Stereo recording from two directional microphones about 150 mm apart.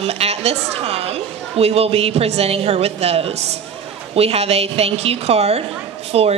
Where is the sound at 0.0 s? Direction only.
45° right (ahead or behind).